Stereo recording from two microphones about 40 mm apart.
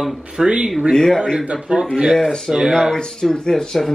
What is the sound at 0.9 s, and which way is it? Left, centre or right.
Speech, centre.